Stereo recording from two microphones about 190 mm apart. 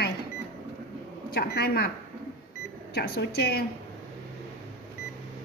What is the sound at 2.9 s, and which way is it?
Speech, 60° left (ahead or behind).